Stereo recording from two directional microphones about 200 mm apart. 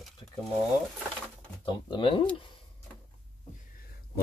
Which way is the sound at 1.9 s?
25° left (ahead or behind).